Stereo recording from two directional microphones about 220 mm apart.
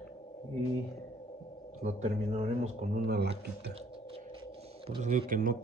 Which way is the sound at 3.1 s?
50° right (ahead or behind).